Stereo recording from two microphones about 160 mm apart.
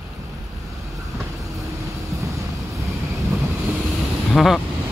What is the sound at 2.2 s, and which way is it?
Vehicle, 20° right (ahead or behind).